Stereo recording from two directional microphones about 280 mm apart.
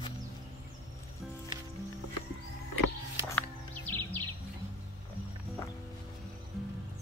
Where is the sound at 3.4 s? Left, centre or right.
Centre.